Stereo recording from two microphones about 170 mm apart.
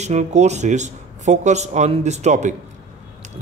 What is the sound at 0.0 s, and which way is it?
Speech, 45° right (ahead or behind).